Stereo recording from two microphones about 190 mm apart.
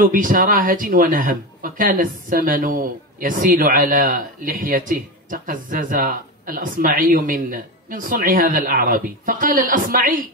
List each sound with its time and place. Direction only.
0.0 s speech: 45° right (ahead or behind)